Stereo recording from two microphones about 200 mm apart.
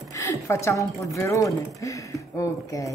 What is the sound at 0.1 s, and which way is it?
A woman's voice, 15° left (ahead or behind).